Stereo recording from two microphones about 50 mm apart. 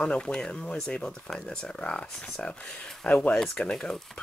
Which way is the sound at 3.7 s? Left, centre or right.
Centre.